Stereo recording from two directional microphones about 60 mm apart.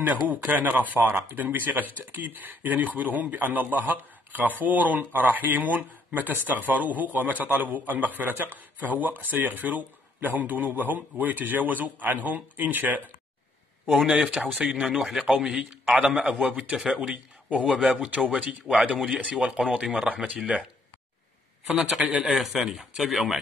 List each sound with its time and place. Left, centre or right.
0.0 s speech: right
14.0 s a man's voice: right
21.6 s a man's voice: centre